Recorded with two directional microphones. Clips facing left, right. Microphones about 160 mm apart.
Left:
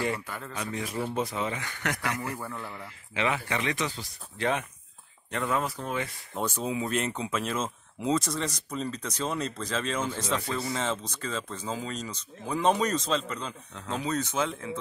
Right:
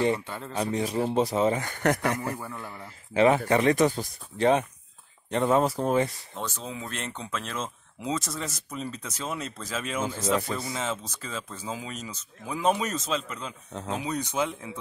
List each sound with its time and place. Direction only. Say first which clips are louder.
0.0 s speech: right 5 dB; 25° right (ahead or behind); by 2.0 s 45° right (ahead or behind)
2.3 s speech: even; 15° right (ahead or behind)
3.2 s speech: right 9 dB; 40° right (ahead or behind)
5.3 s speech: right 6 dB; 30° right (ahead or behind)
6.3 s speech: left 5 dB; 10° left (ahead or behind); by 14.7 s 15° right (ahead or behind)